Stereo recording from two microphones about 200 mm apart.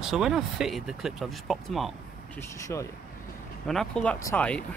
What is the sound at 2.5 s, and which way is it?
Speech, 15° left (ahead or behind).